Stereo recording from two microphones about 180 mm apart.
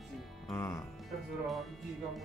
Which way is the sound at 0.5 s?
15° left (ahead or behind).